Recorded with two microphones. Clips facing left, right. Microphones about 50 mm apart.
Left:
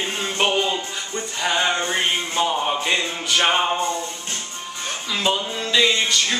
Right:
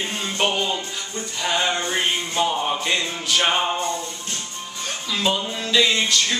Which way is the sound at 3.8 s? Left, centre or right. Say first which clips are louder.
Left 2 dB; left.